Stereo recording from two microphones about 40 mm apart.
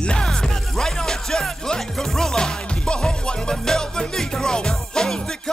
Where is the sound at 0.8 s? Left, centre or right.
Centre.